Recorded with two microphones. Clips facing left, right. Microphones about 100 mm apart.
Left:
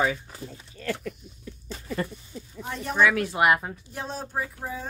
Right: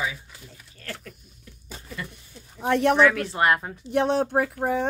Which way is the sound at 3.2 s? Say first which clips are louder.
Even; 10° left (ahead or behind).